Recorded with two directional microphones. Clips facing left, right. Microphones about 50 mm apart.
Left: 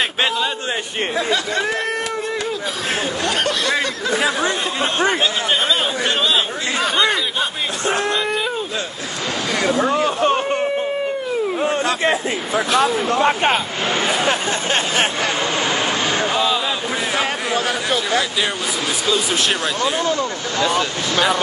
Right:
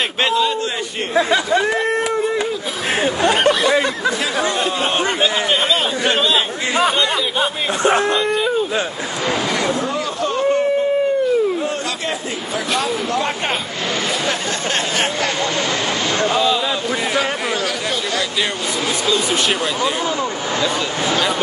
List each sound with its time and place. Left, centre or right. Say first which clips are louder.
1.5 s speech: right 4 dB; centre
3.0 s speech: right 7 dB; right
3.6 s speech: right 4 dB; centre
5.2 s a sound: right 2 dB; centre
6.1 s a man's voice: right 1 dB; centre
8.2 s a sound: right 3 dB; centre
10.0 s a sound: left 4 dB; left
16.2 s speech: right 2 dB; centre
19.0 s speech: right 1 dB; centre